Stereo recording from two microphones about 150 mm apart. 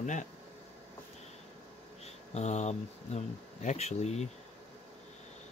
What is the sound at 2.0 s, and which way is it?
Speech, 50° left (ahead or behind).